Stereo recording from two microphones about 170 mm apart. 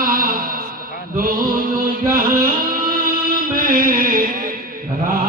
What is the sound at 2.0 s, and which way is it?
Music, 55° right (ahead or behind).